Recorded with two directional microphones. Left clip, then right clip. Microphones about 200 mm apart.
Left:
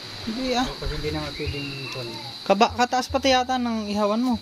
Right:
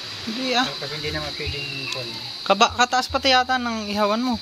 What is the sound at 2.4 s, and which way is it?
Speech, 25° left (ahead or behind).